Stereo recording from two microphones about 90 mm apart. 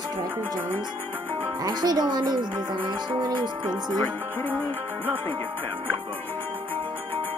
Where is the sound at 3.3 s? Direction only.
55° right (ahead or behind).